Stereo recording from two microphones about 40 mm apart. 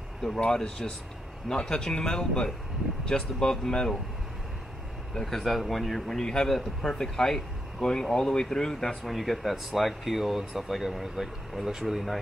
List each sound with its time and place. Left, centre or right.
0.4 s a man's voice: centre
5.1 s a man's voice: centre